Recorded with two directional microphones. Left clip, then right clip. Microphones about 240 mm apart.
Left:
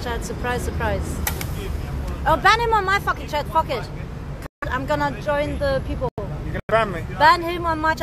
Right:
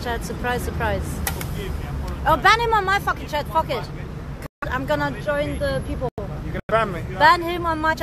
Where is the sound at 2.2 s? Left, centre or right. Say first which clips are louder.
Even; centre.